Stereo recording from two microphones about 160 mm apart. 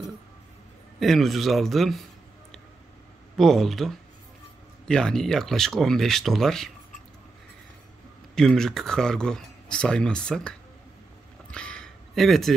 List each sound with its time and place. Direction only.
0.9 s speech: centre (ahead or behind)
3.3 s speech: centre (ahead or behind)
8.4 s speech: 5° left (ahead or behind)
11.5 s a sound: 5° left (ahead or behind)